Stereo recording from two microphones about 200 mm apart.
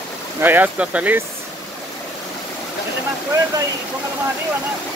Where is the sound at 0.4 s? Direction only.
10° right (ahead or behind).